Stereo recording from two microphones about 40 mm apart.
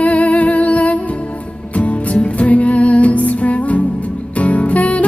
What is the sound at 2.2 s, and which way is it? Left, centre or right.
Music, left.